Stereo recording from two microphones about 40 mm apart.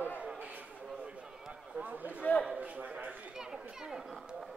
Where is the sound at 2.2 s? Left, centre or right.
Left.